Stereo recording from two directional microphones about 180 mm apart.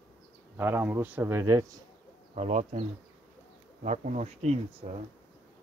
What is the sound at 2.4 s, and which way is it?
Speech, 35° right (ahead or behind).